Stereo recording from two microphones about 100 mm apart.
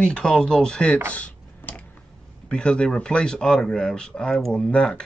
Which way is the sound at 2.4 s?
10° left (ahead or behind).